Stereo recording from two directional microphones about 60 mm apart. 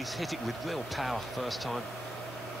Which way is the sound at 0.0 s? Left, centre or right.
Centre.